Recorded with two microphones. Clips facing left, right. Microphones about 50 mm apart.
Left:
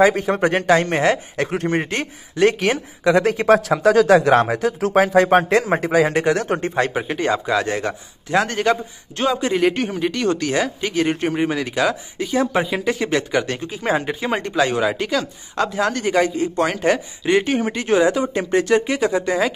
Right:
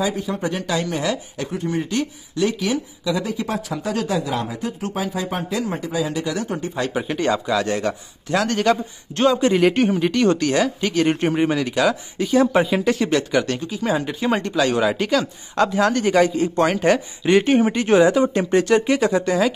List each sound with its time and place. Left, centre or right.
0.3 s speech: left
1.5 s speech: left
1.9 s speech: left
2.6 s speech: left
6.6 s speech: left
6.9 s a man's voice: centre
9.2 s a man's voice: centre
13.6 s a man's voice: left
14.4 s a man's voice: centre
14.8 s a man's voice: centre